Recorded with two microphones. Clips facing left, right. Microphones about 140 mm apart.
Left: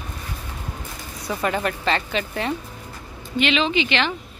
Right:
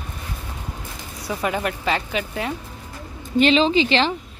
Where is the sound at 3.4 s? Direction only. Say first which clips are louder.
Right 5 dB; 35° right (ahead or behind).